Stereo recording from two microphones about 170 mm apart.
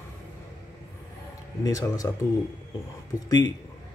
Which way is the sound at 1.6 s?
20° left (ahead or behind).